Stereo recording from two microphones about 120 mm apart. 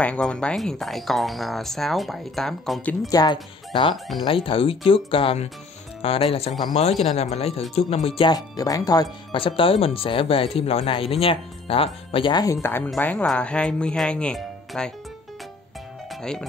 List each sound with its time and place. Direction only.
0.0 s speech: 10° left (ahead or behind)
3.1 s speech: 35° left (ahead or behind)
4.2 s speech: 50° left (ahead or behind)
8.3 s speech: 30° left (ahead or behind)
9.3 s speech: 45° left (ahead or behind)
12.6 s speech: 20° left (ahead or behind)
16.1 s music: 5° left (ahead or behind)